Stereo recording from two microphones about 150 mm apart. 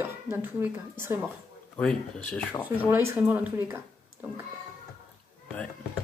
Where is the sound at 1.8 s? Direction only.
5° left (ahead or behind).